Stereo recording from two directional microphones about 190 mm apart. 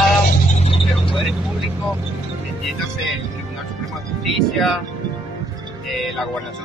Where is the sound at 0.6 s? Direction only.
30° left (ahead or behind).